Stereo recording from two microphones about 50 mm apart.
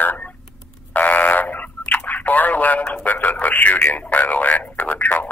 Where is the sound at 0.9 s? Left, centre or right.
Left.